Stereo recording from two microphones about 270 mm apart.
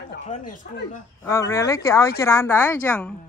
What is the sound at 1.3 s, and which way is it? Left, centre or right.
Speech, centre.